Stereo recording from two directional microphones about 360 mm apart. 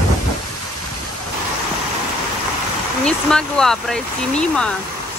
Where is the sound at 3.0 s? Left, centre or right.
Centre.